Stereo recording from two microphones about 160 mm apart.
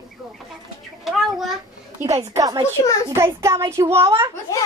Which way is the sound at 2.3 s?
20° right (ahead or behind).